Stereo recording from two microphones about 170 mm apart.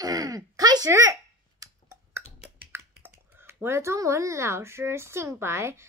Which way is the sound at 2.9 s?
10° right (ahead or behind).